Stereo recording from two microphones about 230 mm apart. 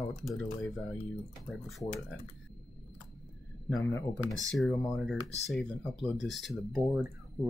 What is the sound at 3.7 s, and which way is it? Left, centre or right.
Speech, centre.